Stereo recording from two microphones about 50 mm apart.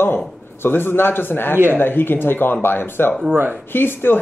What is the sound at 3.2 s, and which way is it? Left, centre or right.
Speech, right.